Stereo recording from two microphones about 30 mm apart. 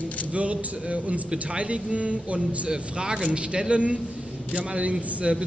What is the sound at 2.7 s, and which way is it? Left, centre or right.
Speech, right.